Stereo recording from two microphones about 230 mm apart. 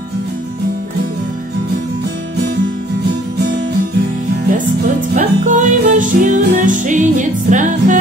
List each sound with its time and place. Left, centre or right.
5.1 s music: right